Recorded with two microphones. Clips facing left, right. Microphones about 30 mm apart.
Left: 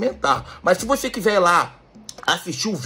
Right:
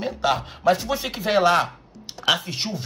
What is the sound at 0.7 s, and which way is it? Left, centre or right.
Speech, right.